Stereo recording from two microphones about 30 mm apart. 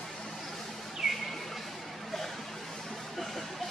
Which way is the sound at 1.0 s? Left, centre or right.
Centre.